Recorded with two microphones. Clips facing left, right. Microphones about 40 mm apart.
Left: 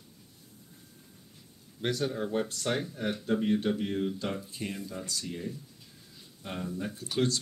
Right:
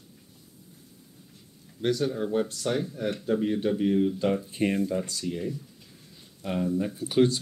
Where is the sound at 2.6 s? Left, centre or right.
Left.